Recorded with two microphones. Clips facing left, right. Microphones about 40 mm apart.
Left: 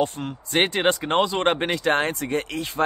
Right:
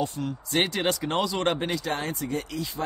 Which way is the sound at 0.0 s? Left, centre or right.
Left.